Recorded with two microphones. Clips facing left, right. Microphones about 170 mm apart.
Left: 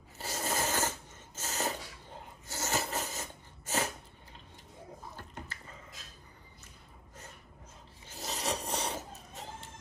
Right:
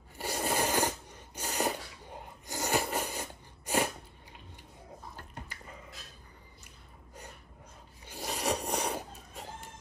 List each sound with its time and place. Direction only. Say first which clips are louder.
0.2 s a sound: right 3 dB; 15° right (ahead or behind)
8.1 s rub: right 3 dB; 10° right (ahead or behind)
8.6 s vehicle: right 3 dB; 10° right (ahead or behind)